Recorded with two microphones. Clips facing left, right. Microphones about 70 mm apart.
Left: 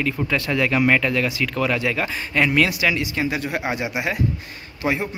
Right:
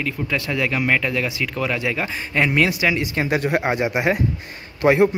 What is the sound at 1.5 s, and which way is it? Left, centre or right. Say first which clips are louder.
Speech: left 1 dB; centre.